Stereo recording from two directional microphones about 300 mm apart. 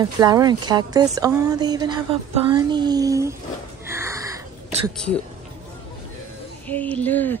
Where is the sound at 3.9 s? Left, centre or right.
Centre.